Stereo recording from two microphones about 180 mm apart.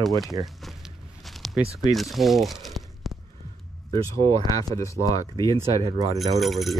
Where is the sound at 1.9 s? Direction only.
Centre (ahead or behind).